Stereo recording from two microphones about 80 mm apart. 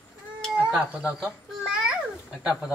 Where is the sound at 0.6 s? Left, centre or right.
Centre.